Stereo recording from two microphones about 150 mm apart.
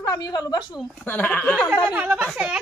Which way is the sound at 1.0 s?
10° left (ahead or behind).